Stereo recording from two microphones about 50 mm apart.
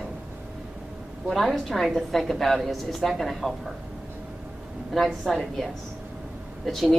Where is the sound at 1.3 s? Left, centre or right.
Centre.